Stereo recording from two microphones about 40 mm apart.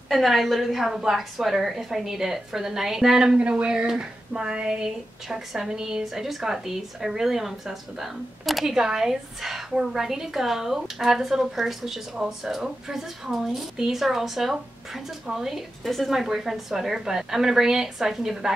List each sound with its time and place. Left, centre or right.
0.1 s a woman's voice: centre
3.3 s a woman's voice: right; by 15.6 s centre
15.8 s a woman's voice: centre
16.1 s a woman's voice: centre